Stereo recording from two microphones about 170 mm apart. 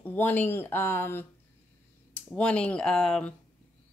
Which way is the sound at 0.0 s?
10° left (ahead or behind).